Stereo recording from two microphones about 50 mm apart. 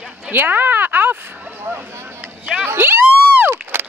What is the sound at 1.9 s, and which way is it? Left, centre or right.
Speech, right.